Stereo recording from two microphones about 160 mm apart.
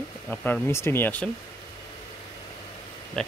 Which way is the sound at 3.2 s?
5° left (ahead or behind).